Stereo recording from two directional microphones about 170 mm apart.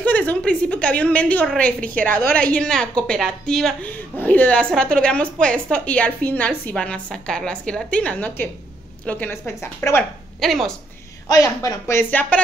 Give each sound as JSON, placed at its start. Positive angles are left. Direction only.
{"t": 0.0, "sound": "a woman's voice", "side_deg": 10}
{"t": 10.4, "sound": "a woman's voice", "side_deg": 0}
{"t": 11.2, "sound": "a woman's voice", "side_deg": 20}